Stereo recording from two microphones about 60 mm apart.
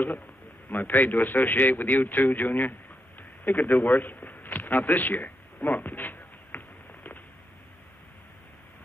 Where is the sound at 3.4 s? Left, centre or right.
Left.